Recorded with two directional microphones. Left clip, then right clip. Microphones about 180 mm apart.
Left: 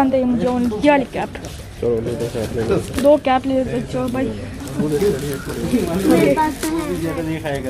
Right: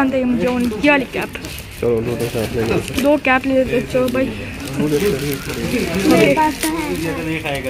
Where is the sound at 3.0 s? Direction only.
10° left (ahead or behind).